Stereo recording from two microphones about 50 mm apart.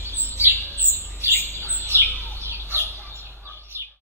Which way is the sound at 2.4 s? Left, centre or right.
Right.